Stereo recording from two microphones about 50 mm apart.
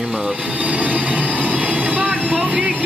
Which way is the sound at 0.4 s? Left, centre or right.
Right.